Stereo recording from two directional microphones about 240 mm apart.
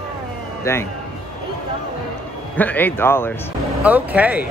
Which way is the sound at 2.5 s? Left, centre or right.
Centre.